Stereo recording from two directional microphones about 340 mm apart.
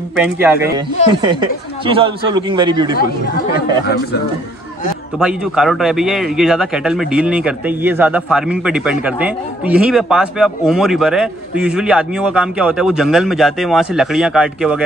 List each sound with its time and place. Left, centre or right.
0.2 s speech: centre
3.8 s speech: left
5.2 s speech: centre